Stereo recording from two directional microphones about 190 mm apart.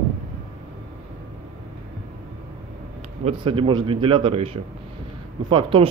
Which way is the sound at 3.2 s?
30° right (ahead or behind).